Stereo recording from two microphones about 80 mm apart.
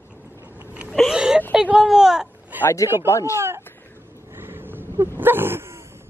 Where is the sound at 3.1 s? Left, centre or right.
Left.